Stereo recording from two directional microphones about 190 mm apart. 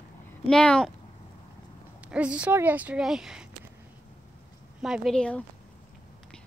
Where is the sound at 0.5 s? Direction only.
5° left (ahead or behind).